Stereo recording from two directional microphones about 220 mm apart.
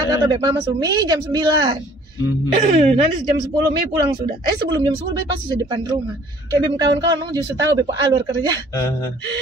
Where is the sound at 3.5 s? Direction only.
20° right (ahead or behind).